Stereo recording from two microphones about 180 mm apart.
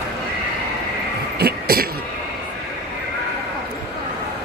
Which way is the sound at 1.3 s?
60° right (ahead or behind).